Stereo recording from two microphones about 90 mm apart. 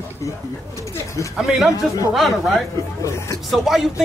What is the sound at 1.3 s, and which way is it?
Speech, 5° right (ahead or behind).